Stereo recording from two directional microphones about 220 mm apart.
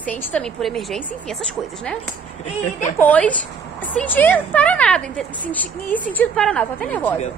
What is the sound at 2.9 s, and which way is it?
A woman's voice, 5° left (ahead or behind).